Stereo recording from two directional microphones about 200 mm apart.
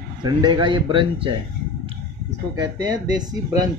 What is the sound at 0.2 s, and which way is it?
Speech, 20° right (ahead or behind).